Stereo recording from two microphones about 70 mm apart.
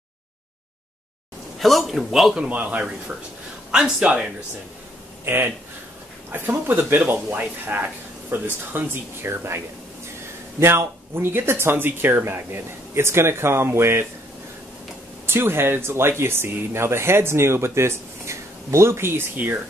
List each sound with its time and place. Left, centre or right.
1.6 s a man's voice: centre
2.4 s a man's voice: centre
5.2 s speech: right
10.6 s speech: right
15.2 s speech: right